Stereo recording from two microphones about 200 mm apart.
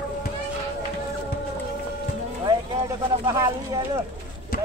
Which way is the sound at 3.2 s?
15° right (ahead or behind).